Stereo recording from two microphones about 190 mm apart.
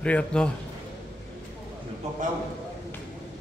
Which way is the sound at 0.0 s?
5° left (ahead or behind).